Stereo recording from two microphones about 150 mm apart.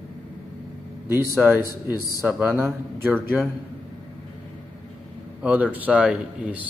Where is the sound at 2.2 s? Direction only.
5° right (ahead or behind).